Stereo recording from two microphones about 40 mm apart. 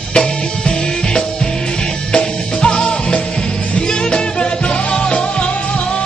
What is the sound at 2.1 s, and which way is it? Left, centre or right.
Music, left.